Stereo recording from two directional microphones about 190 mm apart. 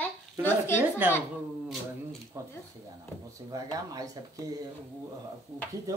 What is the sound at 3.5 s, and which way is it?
Speech, 20° right (ahead or behind).